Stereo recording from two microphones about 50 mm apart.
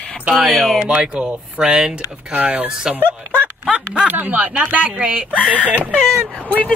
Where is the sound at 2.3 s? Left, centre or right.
Right.